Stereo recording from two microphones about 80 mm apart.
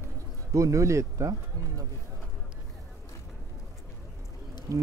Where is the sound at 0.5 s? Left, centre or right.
Right.